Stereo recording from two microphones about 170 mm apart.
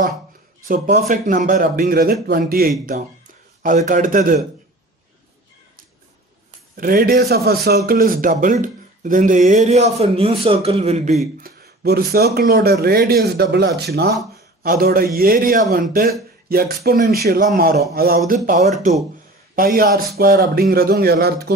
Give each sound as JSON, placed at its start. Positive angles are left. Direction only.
{"t": 0.7, "sound": "speech", "side_deg": -70}
{"t": 1.0, "sound": "a man's voice", "side_deg": -50}
{"t": 3.6, "sound": "a man's voice", "side_deg": -50}
{"t": 6.8, "sound": "a man's voice", "side_deg": -60}
{"t": 11.4, "sound": "speech", "side_deg": -65}
{"t": 14.6, "sound": "speech", "side_deg": -60}
{"t": 19.5, "sound": "speech", "side_deg": -60}